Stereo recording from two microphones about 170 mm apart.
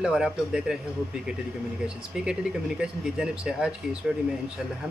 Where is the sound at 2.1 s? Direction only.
5° right (ahead or behind).